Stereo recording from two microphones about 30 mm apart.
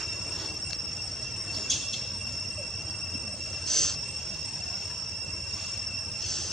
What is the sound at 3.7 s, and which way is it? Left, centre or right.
Train wheels squealing, centre.